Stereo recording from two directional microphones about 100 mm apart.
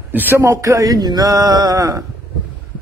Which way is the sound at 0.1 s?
20° right (ahead or behind).